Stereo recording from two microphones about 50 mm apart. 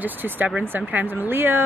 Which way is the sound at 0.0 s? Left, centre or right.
Right.